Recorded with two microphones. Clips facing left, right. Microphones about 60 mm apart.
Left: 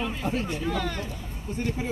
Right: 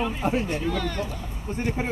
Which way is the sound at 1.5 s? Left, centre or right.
Right.